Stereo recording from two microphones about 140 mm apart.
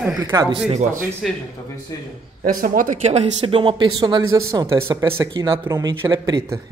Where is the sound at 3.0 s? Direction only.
50° right (ahead or behind).